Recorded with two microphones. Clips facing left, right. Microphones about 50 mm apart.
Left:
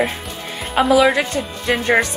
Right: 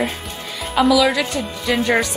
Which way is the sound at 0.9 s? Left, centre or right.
Left.